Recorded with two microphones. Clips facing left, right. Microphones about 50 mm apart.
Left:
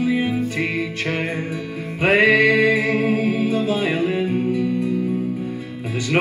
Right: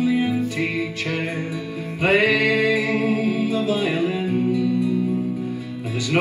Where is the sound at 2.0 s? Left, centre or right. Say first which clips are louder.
Left 3 dB; left.